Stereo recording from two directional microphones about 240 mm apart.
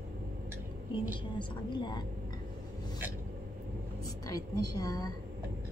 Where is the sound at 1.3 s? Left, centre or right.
Centre.